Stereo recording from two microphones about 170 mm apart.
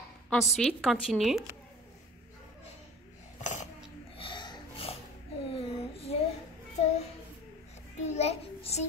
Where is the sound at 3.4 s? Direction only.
45° left (ahead or behind).